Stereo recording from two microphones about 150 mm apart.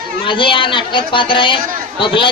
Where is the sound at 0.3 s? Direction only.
35° left (ahead or behind).